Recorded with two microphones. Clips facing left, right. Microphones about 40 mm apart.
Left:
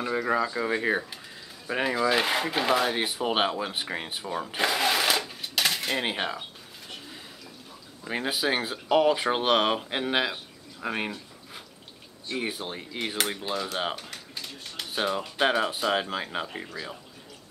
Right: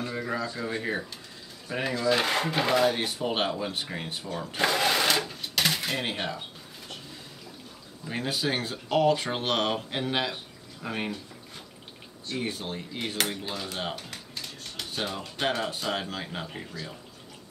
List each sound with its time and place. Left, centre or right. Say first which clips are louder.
0.2 s speech: left 6 dB; left
4.6 s sewing machine: right 1 dB; centre
5.9 s speech: left 2 dB; centre
8.0 s speech: left 2 dB; centre
12.3 s speech: left 1 dB; centre